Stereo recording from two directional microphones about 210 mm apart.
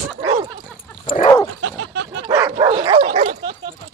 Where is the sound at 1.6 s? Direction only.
55° right (ahead or behind).